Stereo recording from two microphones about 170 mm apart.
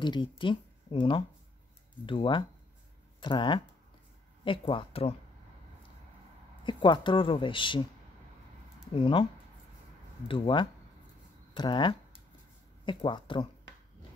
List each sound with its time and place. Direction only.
0.0 s speech: 25° left (ahead or behind)
6.6 s speech: 25° left (ahead or behind)
8.9 s speech: 30° left (ahead or behind)
10.2 s speech: 30° left (ahead or behind)